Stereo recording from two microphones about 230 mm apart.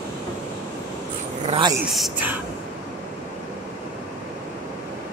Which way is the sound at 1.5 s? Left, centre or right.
Right.